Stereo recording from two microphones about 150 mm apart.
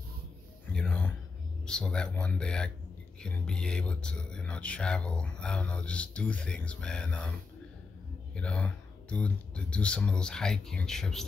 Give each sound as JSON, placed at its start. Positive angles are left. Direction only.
{"t": 0.7, "sound": "a sound", "side_deg": 10}
{"t": 1.7, "sound": "speech", "side_deg": 5}
{"t": 8.4, "sound": "speech", "side_deg": 10}